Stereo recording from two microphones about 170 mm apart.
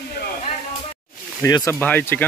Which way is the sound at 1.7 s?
10° left (ahead or behind).